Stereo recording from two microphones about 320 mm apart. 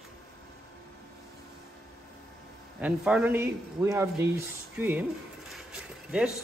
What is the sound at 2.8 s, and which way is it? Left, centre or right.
A man's voice, centre.